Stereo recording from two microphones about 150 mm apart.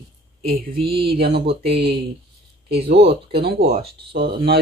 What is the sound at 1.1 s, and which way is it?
Speech, 40° right (ahead or behind).